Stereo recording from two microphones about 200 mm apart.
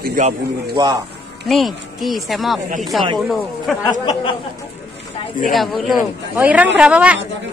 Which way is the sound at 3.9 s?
20° left (ahead or behind).